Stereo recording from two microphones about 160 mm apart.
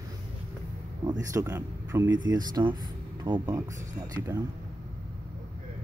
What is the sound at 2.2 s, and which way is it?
Speech, 25° right (ahead or behind).